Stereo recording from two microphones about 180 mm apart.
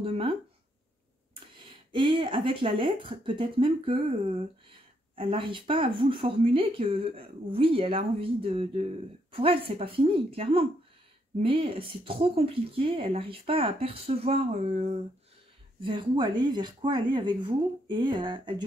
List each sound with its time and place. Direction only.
0.0 s a sound: 30° right (ahead or behind)
1.6 s speech: 30° right (ahead or behind)
15.8 s speech: 25° right (ahead or behind)